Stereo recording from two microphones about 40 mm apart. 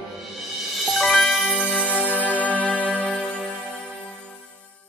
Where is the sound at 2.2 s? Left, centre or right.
Left.